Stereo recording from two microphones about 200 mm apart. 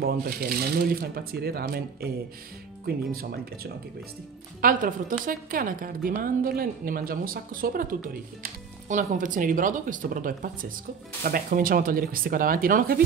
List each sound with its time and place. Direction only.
0.0 s a woman's voice: 50° right (ahead or behind)
3.1 s a woman's voice: 50° right (ahead or behind)